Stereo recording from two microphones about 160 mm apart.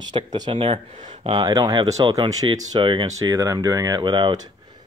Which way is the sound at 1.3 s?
25° right (ahead or behind).